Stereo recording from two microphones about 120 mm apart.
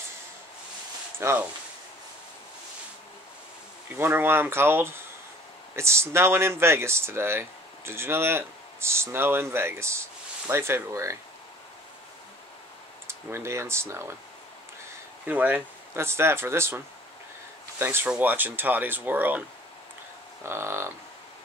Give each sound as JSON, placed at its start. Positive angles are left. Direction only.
{"t": 1.2, "sound": "speech", "side_deg": -20}
{"t": 3.9, "sound": "speech", "side_deg": -15}
{"t": 13.0, "sound": "speech", "side_deg": -20}
{"t": 15.2, "sound": "speech", "side_deg": -15}
{"t": 20.4, "sound": "speech", "side_deg": -20}